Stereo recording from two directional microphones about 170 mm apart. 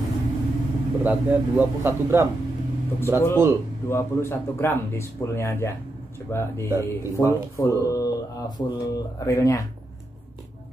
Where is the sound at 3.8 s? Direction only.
15° left (ahead or behind).